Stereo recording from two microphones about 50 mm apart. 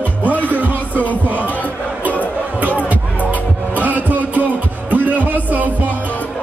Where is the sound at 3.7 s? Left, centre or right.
Right.